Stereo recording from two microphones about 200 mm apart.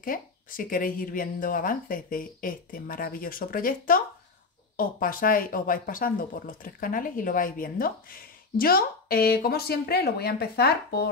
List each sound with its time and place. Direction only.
0.0 s speech: 45° left (ahead or behind)